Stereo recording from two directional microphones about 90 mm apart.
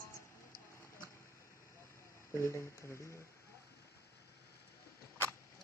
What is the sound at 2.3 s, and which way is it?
Speech, 35° left (ahead or behind).